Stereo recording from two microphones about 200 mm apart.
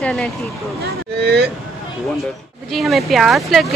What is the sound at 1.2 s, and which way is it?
Speech, 55° right (ahead or behind).